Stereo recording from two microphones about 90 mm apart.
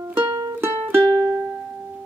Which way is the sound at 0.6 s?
25° right (ahead or behind).